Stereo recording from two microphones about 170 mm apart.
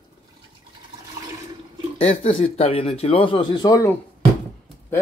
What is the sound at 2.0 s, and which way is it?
Speech, 35° left (ahead or behind).